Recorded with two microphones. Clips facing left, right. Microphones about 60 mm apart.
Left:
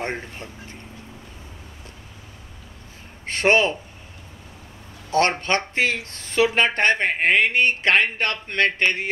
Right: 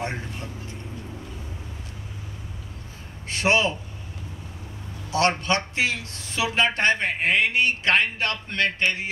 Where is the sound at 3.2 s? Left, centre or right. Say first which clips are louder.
Left 3 dB; left.